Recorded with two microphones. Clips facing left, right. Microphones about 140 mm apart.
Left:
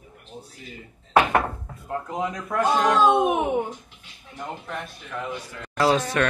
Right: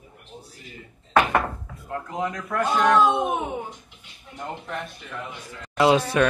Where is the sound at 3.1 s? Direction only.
75° left (ahead or behind).